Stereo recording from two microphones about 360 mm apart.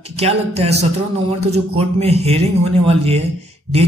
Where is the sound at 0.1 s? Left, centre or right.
Centre.